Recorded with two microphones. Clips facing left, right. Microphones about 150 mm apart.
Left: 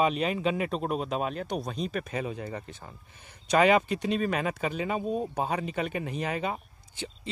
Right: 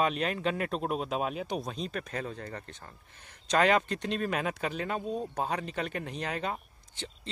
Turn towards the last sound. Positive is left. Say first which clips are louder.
# left 4 dB
turn(degrees=5)  # may be behind; listen again after turning